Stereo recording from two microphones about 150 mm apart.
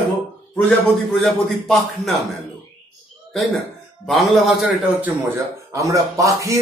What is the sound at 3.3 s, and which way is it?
Speech, centre (ahead or behind).